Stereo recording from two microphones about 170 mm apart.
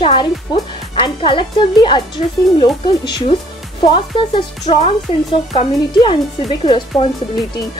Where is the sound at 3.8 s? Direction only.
30° left (ahead or behind).